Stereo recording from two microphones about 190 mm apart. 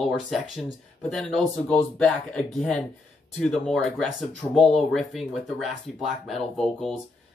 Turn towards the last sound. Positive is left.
turn(degrees=0)  # may be behind; listen again after turning